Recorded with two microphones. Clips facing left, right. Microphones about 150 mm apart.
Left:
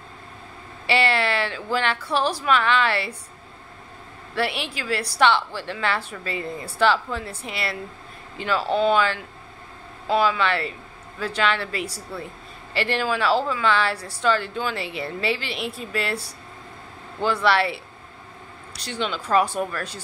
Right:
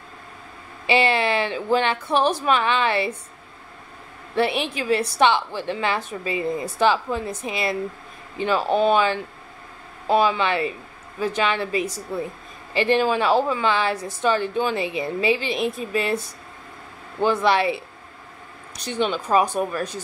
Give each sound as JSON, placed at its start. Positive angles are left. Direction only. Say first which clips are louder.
{"t": 0.8, "sound": "a woman's voice", "louder": "right 2 dB", "side_deg": -15}
{"t": 4.4, "sound": "a woman's voice", "louder": "right 4 dB", "side_deg": -20}
{"t": 18.9, "sound": "a woman's voice", "louder": "right 3 dB", "side_deg": -15}